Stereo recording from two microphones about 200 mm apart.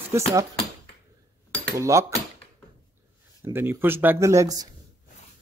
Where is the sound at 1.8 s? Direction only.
15° right (ahead or behind).